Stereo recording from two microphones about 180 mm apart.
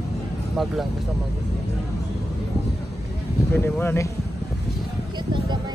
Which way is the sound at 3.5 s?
10° left (ahead or behind).